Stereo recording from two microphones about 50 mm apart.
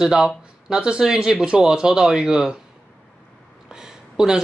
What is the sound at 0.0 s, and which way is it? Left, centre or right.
Speech, centre.